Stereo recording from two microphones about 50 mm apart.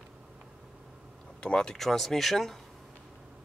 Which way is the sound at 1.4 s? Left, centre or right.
Centre.